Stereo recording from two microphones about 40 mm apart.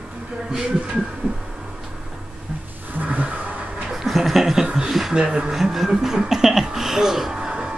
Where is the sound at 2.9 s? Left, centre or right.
Right.